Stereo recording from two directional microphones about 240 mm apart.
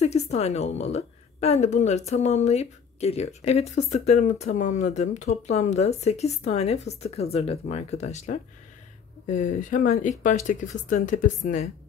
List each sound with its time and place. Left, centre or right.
0.0 s a woman's voice: left